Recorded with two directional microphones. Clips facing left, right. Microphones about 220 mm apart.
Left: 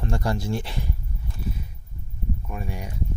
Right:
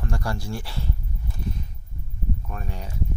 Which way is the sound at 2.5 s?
10° left (ahead or behind).